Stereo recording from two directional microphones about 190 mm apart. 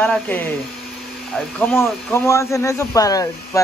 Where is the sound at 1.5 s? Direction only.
15° left (ahead or behind).